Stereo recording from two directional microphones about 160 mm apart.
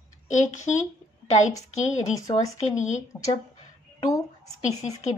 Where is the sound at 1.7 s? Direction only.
45° left (ahead or behind).